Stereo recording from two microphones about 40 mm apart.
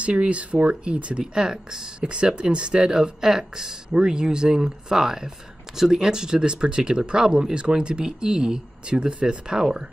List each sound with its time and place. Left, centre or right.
0.0 s speech: right
1.2 s speech: centre